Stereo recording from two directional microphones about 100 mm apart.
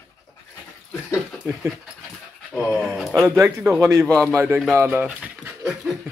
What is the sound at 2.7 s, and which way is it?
Speech, 5° right (ahead or behind).